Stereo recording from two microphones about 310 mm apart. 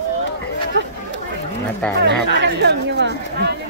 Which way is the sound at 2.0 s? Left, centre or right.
Right.